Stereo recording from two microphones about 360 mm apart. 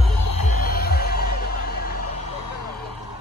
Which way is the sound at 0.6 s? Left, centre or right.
Left.